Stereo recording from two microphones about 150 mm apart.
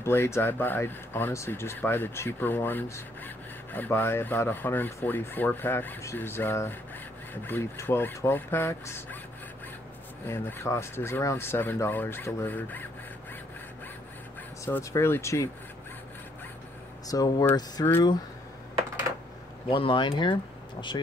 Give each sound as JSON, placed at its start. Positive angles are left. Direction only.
{"t": 0.0, "sound": "speech", "side_deg": 15}
{"t": 10.2, "sound": "speech", "side_deg": 15}
{"t": 14.6, "sound": "speech", "side_deg": 20}
{"t": 17.1, "sound": "speech", "side_deg": 25}
{"t": 19.7, "sound": "speech", "side_deg": 35}